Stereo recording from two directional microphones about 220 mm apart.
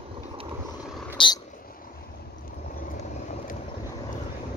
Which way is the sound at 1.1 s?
20° left (ahead or behind).